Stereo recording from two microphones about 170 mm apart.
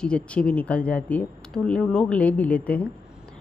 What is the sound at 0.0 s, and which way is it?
A woman's voice, 5° left (ahead or behind).